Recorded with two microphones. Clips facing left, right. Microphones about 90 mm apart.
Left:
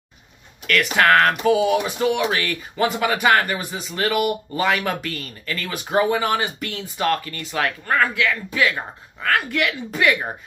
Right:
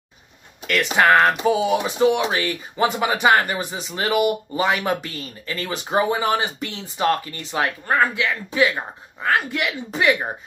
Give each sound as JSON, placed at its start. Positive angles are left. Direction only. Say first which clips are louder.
{"t": 0.7, "sound": "speech", "louder": "even", "side_deg": -20}